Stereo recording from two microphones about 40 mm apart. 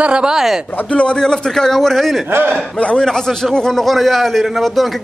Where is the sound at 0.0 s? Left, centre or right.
Right.